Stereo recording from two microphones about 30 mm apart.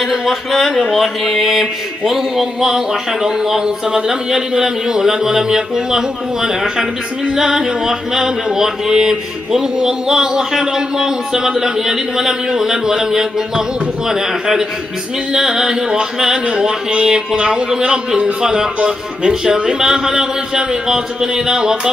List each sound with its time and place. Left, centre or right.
0.0 s speech: centre
1.5 s a man's voice: centre